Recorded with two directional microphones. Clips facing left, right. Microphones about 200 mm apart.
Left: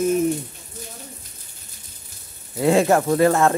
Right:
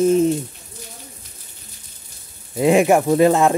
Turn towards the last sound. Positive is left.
turn(degrees=-15)  # may be behind; listen again after turning